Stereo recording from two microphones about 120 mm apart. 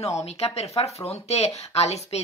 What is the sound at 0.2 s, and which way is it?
Speech, 60° left (ahead or behind).